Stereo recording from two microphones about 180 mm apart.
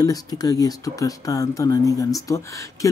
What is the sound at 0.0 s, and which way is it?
Speech, 20° left (ahead or behind).